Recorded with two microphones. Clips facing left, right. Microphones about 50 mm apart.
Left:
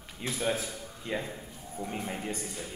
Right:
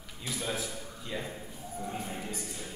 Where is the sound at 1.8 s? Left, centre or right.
Left.